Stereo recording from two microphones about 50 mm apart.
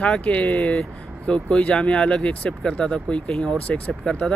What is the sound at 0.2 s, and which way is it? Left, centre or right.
Speech, left.